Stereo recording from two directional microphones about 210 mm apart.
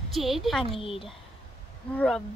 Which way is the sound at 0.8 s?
25° left (ahead or behind).